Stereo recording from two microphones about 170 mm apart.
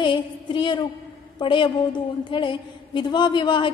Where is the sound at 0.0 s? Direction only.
30° left (ahead or behind).